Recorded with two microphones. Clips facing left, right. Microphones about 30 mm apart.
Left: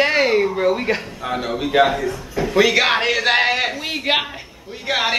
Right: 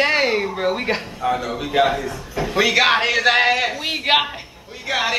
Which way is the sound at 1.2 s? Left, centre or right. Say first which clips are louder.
Right 4 dB; left.